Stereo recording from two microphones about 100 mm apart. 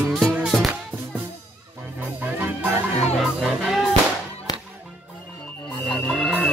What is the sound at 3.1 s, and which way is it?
Music, centre (ahead or behind).